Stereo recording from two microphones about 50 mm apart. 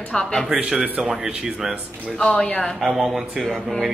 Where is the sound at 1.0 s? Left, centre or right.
Centre.